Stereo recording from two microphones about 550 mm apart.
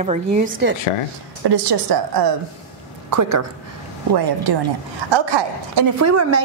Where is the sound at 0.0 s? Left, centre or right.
Centre.